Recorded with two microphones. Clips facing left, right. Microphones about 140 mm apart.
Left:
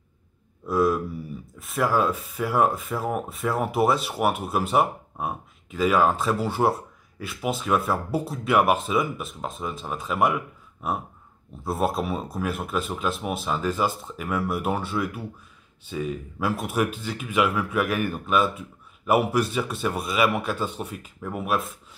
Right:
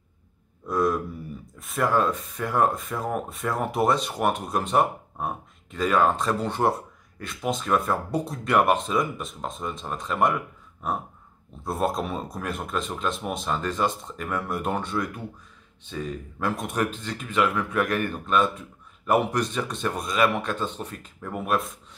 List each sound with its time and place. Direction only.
0.7 s a man's voice: 5° left (ahead or behind)